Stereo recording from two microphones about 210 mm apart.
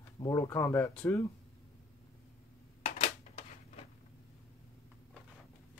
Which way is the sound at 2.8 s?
30° left (ahead or behind).